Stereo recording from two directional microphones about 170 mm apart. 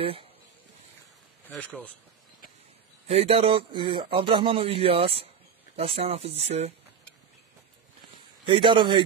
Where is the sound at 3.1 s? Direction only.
35° right (ahead or behind).